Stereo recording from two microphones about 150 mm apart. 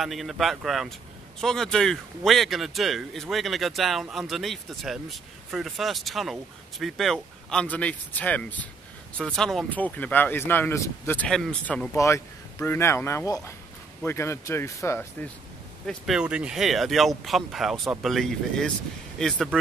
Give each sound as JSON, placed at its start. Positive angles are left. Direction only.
{"t": 0.0, "sound": "a man's voice", "side_deg": 0}
{"t": 15.9, "sound": "a man's voice", "side_deg": -5}